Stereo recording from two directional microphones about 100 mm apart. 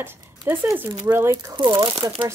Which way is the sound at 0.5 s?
25° right (ahead or behind).